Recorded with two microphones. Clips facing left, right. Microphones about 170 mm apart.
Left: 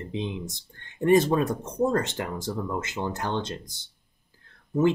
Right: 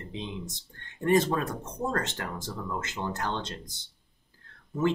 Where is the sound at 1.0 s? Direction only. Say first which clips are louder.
Left 4 dB; 15° left (ahead or behind).